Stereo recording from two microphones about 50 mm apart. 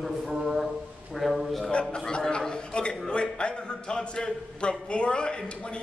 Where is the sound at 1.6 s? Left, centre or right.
Centre.